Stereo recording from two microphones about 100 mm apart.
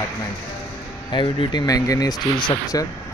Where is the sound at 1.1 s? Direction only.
55° left (ahead or behind).